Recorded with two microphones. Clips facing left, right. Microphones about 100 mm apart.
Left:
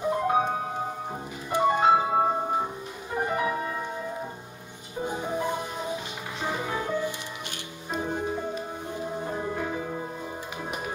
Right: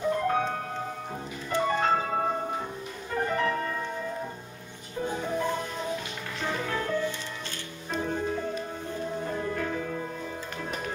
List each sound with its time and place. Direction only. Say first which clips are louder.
0.0 s music: left 2 dB; 15° left (ahead or behind)